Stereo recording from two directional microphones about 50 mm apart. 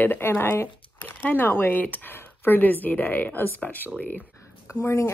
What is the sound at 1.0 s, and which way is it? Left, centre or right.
Speech, left.